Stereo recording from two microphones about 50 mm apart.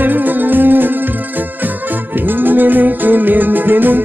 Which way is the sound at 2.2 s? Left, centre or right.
Right.